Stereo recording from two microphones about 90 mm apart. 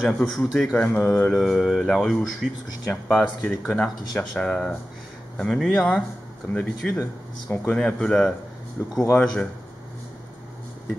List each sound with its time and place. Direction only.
0.0 s speech: centre (ahead or behind)
6.5 s speech: 20° left (ahead or behind)
7.7 s speech: 10° left (ahead or behind)
9.1 s speech: 5° left (ahead or behind)